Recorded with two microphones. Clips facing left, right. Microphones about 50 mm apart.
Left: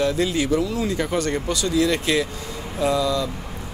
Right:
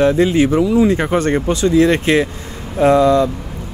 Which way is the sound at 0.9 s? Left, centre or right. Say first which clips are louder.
Right 8 dB; right.